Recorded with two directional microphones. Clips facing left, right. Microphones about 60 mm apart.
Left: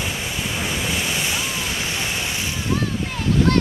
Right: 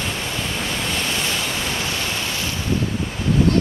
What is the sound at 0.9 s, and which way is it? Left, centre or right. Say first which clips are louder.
Waves: even; centre.